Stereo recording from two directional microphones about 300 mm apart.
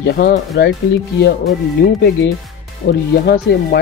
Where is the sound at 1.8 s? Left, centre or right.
Left.